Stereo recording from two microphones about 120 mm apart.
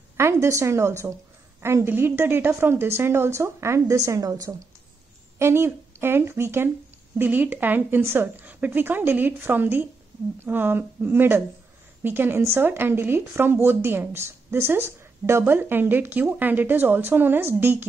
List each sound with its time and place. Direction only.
0.2 s a woman's voice: 25° right (ahead or behind)